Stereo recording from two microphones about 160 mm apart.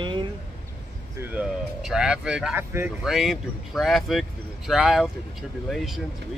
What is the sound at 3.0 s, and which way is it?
Speech, centre (ahead or behind).